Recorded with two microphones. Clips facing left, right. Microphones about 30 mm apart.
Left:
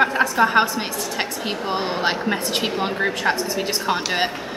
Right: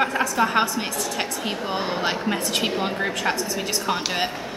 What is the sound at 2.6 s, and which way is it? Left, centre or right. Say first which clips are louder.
A woman's voice: left 2 dB; centre.